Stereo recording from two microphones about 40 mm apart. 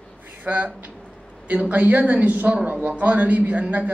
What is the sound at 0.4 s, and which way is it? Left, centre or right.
A man's voice, right.